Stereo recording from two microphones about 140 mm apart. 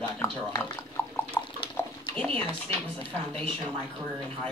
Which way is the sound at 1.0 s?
20° left (ahead or behind).